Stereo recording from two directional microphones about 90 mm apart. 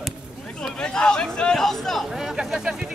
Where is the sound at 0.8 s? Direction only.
10° left (ahead or behind); by 2.9 s 5° right (ahead or behind).